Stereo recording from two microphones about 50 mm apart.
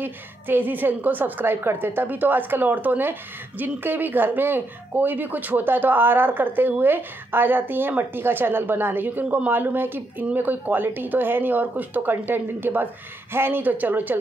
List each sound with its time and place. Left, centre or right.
0.0 s a woman's voice: right